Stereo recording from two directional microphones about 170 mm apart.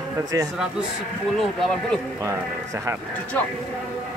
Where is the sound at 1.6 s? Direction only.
5° left (ahead or behind).